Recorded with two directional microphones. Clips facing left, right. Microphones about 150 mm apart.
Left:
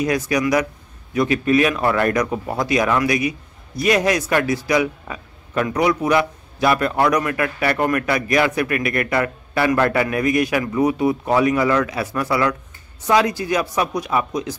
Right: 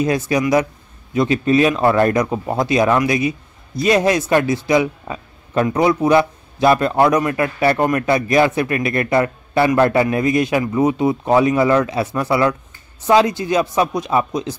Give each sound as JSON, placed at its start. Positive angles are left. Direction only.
{"t": 0.0, "sound": "a man's voice", "side_deg": -25}